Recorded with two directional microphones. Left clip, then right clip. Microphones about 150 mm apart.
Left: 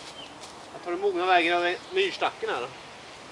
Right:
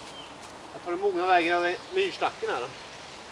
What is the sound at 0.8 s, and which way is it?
Speech, 20° left (ahead or behind).